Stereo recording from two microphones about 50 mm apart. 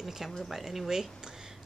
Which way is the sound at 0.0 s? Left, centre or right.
Centre.